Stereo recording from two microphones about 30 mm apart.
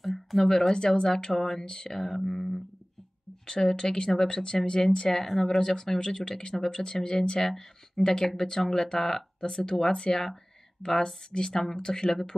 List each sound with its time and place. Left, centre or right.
0.0 s a sound: centre
0.7 s speech: left
1.0 s speech: centre
3.7 s speech: left
5.2 s speech: centre
5.6 s speech: centre
6.8 s speech: left